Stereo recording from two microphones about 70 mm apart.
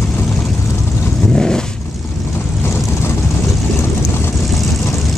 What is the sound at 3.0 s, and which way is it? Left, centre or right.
Vehicle, left.